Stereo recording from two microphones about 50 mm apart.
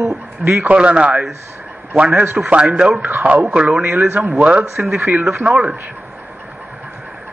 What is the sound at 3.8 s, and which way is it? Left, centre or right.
Speech, right.